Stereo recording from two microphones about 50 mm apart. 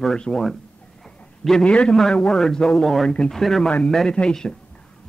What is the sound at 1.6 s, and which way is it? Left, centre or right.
Speech, left.